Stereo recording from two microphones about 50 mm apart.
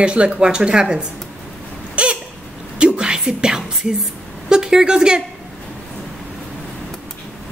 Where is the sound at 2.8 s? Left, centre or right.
Centre.